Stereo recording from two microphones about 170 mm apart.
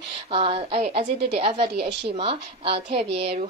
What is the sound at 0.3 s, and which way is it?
A woman's voice, 35° right (ahead or behind).